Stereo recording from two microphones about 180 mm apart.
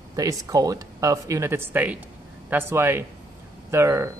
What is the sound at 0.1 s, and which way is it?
Speech, 20° right (ahead or behind).